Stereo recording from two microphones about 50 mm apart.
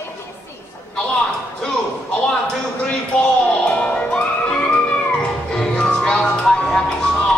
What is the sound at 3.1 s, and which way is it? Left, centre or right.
Music, left.